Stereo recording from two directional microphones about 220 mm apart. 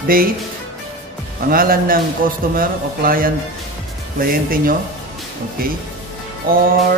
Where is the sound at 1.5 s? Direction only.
40° right (ahead or behind).